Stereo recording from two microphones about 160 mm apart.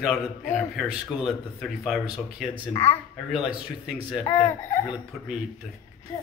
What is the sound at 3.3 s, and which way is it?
Speech, 5° right (ahead or behind).